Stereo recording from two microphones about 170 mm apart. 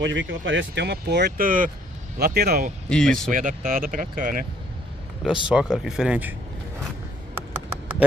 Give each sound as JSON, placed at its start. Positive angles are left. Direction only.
{"t": 0.0, "sound": "speech", "side_deg": -90}
{"t": 2.1, "sound": "speech", "side_deg": -65}
{"t": 2.9, "sound": "speech", "side_deg": 5}
{"t": 3.3, "sound": "speech", "side_deg": -50}
{"t": 5.2, "sound": "speech", "side_deg": -5}